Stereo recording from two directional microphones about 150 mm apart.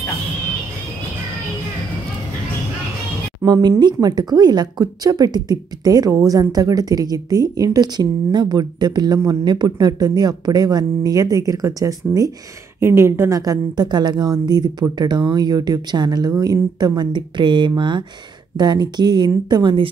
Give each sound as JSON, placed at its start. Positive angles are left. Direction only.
{"t": 3.4, "sound": "speech", "side_deg": -25}